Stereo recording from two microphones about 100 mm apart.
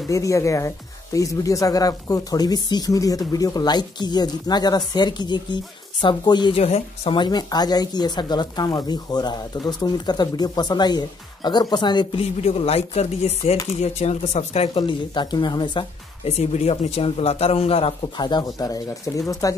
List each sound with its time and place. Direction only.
0.1 s speech: 30° left (ahead or behind); by 6.5 s 50° left (ahead or behind)
6.5 s a man's voice: 80° left
7.2 s speech: 45° left (ahead or behind)
12.2 s speech: 90° left; by 15.8 s 50° left (ahead or behind)
16.3 s a man's voice: 90° left; by 17.9 s 75° left (ahead or behind)
18.1 s speech: 50° left (ahead or behind)